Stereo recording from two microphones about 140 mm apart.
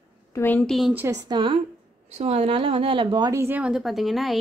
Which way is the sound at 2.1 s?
50° right (ahead or behind).